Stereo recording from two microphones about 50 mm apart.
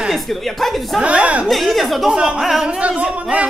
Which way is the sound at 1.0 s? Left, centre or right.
Right.